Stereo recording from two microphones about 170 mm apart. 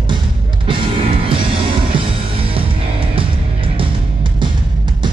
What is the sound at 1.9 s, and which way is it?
Music, 30° right (ahead or behind).